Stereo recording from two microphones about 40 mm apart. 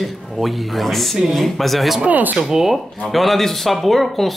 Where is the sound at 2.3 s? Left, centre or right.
Centre.